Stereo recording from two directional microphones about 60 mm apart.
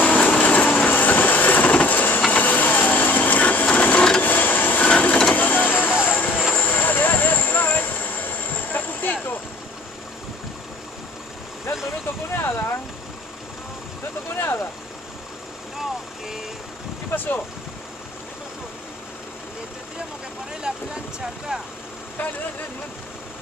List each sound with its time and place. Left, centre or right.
0.0 s a sound: left
4.2 s printer: left
5.9 s vehicle: centre
6.1 s vehicle: left
12.4 s a sound: left
14.3 s vehicle: left
20.7 s vehicle: centre
22.2 s vehicle: left